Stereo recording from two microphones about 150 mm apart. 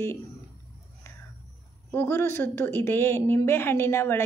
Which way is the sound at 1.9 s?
15° left (ahead or behind).